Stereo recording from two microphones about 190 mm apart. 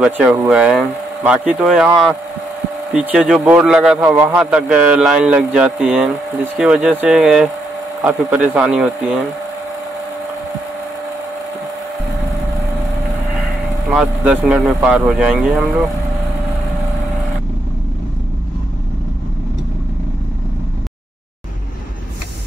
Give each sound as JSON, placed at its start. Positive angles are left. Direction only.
{"t": 0.0, "sound": "a man's voice", "side_deg": -10}
{"t": 2.9, "sound": "a man's voice", "side_deg": -5}
{"t": 13.8, "sound": "a man's voice", "side_deg": -5}